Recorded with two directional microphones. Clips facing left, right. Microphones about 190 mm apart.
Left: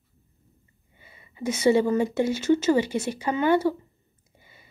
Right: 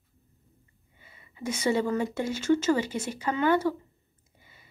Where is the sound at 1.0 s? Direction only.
20° left (ahead or behind).